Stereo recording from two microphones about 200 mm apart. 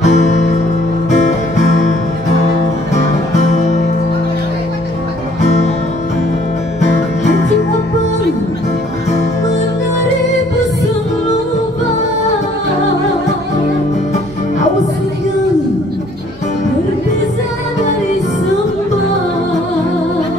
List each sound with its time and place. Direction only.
0.0 s music: 35° left (ahead or behind)